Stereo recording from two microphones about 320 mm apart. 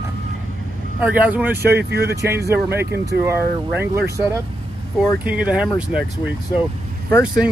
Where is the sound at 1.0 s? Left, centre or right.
Centre.